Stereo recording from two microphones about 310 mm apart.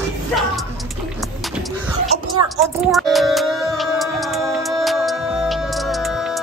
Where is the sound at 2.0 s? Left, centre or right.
Centre.